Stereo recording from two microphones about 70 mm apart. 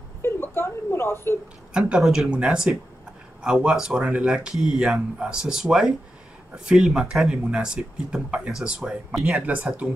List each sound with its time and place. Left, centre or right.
0.2 s a woman's voice: left
1.7 s a woman's voice: centre
2.0 s speech: centre
2.3 s speech: centre